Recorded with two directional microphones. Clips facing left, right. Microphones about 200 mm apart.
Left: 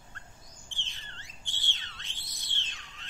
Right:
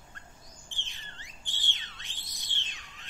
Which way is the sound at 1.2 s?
15° right (ahead or behind).